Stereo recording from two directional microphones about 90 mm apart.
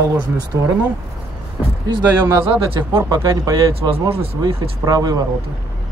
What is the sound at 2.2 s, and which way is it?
Speech, 25° right (ahead or behind).